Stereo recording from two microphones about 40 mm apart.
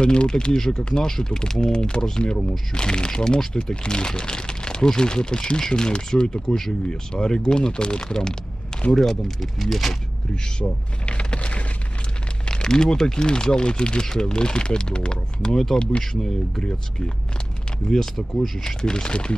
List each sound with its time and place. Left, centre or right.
0.0 s speech: left
8.9 s speech: centre
10.6 s speech: left
12.4 s speech: centre
16.0 s speech: centre
18.6 s speech: centre